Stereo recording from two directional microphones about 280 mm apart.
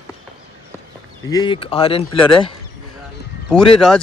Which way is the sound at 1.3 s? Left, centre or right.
Centre.